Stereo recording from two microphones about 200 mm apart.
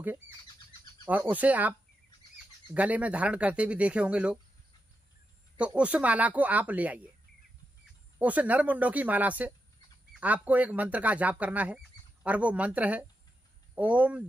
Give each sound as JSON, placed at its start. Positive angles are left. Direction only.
{"t": 1.0, "sound": "speech", "side_deg": -10}
{"t": 5.6, "sound": "speech", "side_deg": -5}
{"t": 8.2, "sound": "speech", "side_deg": -5}